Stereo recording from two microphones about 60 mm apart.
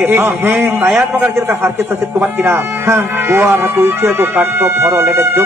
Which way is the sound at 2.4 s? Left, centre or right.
Right.